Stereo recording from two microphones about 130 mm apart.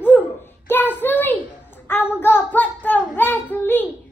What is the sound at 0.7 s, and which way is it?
Child singing, 15° left (ahead or behind).